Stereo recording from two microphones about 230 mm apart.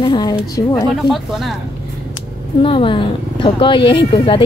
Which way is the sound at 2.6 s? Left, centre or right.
Left.